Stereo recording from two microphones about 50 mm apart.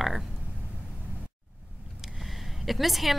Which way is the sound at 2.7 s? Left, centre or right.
Centre.